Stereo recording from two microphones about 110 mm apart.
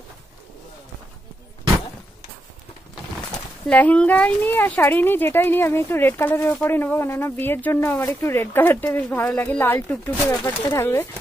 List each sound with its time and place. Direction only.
3.6 s speech: 10° left (ahead or behind)
10.3 s speech: 35° left (ahead or behind)
10.8 s speech: 20° left (ahead or behind)